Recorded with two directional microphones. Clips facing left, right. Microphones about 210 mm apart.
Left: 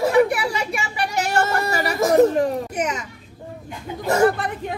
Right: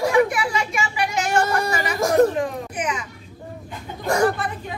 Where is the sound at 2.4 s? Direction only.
40° left (ahead or behind).